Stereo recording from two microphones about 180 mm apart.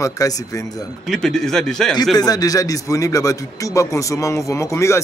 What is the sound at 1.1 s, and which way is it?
Speech, 5° left (ahead or behind).